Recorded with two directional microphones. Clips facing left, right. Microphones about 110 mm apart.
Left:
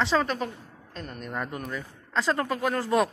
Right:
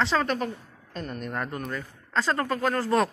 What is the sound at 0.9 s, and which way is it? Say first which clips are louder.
A man's voice: right 2 dB; centre (ahead or behind).